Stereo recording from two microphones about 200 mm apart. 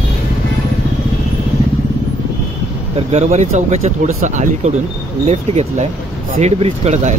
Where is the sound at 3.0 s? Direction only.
30° right (ahead or behind).